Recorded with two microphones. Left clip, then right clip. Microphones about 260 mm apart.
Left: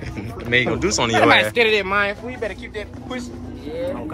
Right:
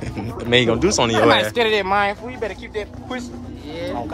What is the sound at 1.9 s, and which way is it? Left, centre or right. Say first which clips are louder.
Speech: right 1 dB; right.